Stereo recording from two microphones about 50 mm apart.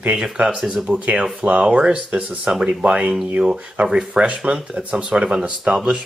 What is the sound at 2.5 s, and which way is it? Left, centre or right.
Speech, centre.